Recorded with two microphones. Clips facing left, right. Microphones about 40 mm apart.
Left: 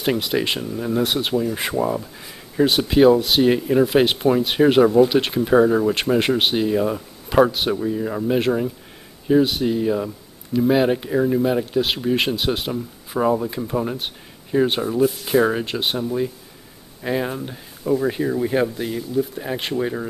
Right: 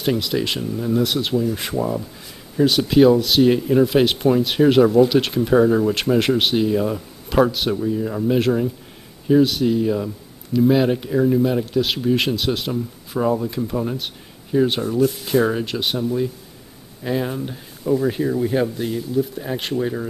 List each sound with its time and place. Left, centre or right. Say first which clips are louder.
0.0 s speech: even; centre
2.8 s speech: even; centre
15.0 s speech: left 2 dB; centre